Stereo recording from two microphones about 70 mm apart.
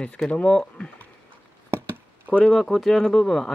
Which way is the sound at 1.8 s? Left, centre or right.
Right.